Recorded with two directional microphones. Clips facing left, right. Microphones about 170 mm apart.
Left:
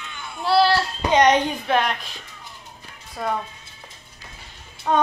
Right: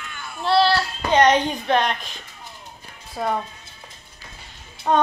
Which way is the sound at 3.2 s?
15° right (ahead or behind).